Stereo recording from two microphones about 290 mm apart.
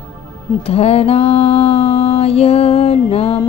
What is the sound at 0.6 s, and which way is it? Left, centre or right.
Music, left.